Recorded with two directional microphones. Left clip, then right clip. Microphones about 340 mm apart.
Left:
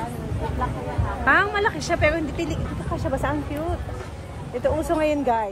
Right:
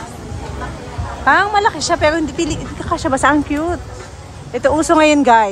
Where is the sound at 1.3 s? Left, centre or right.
Centre.